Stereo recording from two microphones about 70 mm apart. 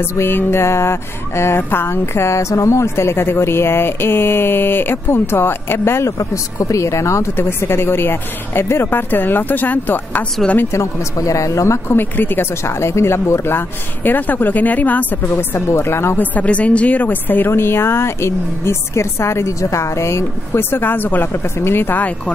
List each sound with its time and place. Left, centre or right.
0.0 s a woman's voice: left
6.0 s a woman's voice: left
10.6 s a woman's voice: left
15.2 s a woman's voice: left
16.2 s a woman's voice: left